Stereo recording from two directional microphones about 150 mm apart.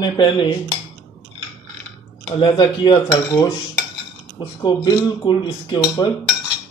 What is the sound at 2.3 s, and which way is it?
A man's voice, 30° left (ahead or behind).